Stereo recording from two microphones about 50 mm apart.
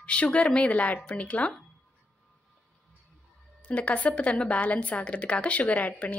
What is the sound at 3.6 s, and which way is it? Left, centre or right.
A woman's voice, left.